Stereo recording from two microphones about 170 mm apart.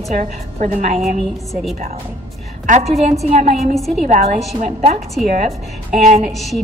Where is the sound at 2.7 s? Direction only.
40° right (ahead or behind).